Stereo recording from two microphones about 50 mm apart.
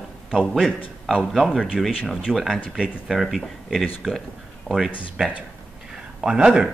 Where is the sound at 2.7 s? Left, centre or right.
Centre.